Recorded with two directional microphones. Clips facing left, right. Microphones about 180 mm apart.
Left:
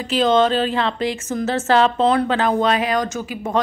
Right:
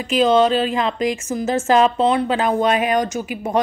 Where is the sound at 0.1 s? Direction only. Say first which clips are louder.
Right 1 dB; 10° right (ahead or behind).